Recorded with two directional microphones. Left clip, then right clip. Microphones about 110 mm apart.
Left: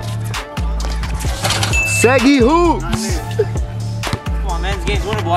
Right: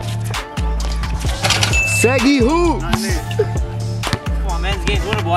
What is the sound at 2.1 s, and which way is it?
Speech, 15° left (ahead or behind).